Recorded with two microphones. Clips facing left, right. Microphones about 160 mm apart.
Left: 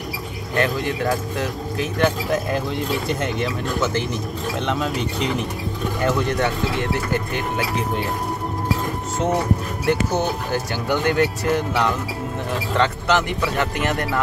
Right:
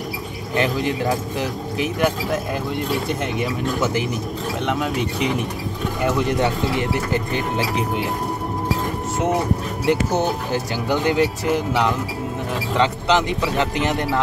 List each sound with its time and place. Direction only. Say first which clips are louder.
0.6 s speech: right 1 dB; 15° right (ahead or behind)
9.8 s speech: right 1 dB; 20° right (ahead or behind)